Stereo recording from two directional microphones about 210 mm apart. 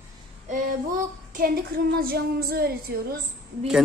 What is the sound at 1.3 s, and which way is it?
Child singing, 45° right (ahead or behind).